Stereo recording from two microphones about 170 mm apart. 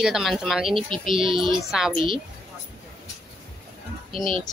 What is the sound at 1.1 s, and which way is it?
Speech, 30° right (ahead or behind).